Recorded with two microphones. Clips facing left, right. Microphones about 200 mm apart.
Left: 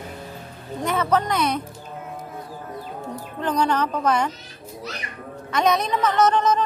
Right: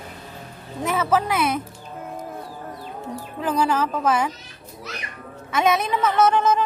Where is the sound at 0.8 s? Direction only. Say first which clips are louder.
Even; 5° right (ahead or behind).